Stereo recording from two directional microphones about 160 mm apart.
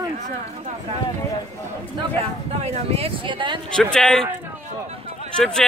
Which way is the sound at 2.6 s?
40° right (ahead or behind).